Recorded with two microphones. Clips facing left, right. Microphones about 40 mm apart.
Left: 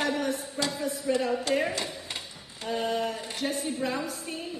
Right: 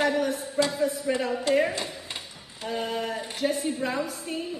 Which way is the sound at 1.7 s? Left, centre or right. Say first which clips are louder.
Even; right.